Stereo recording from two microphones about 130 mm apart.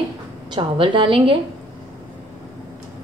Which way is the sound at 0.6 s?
40° right (ahead or behind).